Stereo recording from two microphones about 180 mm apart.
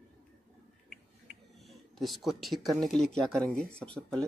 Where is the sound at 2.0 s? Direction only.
Centre (ahead or behind).